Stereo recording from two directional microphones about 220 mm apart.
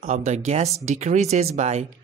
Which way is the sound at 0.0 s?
35° right (ahead or behind).